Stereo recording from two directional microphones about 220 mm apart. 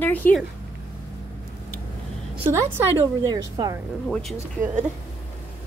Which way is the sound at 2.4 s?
10° right (ahead or behind).